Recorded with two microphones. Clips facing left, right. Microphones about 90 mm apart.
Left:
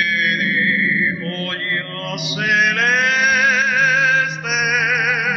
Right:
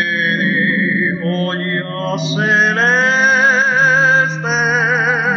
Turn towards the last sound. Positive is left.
turn(degrees=-30)  # may be behind; listen again after turning